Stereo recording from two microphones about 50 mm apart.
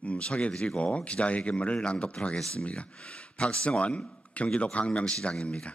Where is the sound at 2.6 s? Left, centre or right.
Left.